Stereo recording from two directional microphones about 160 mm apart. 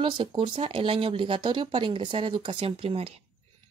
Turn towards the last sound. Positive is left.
turn(degrees=-35)  # may be behind; listen again after turning